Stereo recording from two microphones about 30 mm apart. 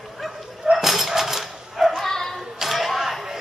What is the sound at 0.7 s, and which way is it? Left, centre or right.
Dog, centre.